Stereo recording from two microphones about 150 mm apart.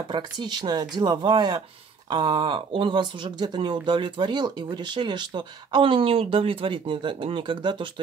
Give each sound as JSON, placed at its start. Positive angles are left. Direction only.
{"t": 0.1, "sound": "speech", "side_deg": -30}